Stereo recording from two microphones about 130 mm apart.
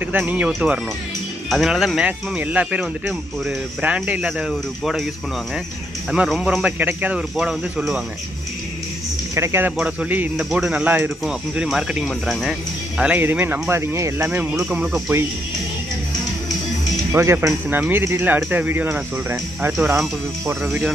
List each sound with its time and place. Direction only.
0.0 s speech: 10° right (ahead or behind)
6.1 s speech: 5° right (ahead or behind)
9.3 s speech: 20° right (ahead or behind)
17.1 s speech: 20° right (ahead or behind)